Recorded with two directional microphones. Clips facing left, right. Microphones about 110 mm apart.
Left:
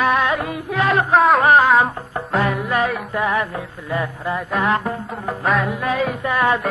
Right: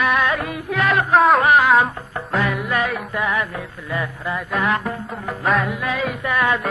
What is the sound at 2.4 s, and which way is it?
Music, 35° left (ahead or behind).